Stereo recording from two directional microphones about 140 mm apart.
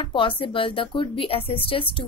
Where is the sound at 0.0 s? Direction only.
35° left (ahead or behind).